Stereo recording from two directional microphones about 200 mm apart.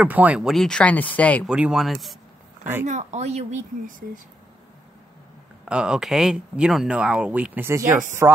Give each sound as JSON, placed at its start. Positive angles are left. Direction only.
{"t": 0.0, "sound": "speech", "side_deg": -5}
{"t": 1.5, "sound": "speech", "side_deg": -5}
{"t": 2.8, "sound": "speech", "side_deg": -35}
{"t": 5.7, "sound": "speech", "side_deg": -5}